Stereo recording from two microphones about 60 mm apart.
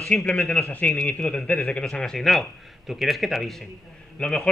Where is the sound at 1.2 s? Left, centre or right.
Centre.